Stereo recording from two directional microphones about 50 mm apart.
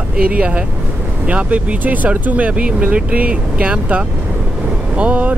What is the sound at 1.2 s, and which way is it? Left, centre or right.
Speech, right.